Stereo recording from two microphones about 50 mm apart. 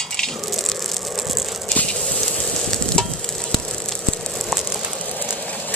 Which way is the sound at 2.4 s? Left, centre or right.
Centre.